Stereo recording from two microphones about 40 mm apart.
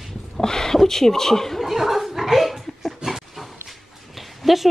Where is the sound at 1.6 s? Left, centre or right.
Centre.